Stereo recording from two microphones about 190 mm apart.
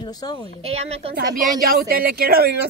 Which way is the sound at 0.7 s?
35° right (ahead or behind).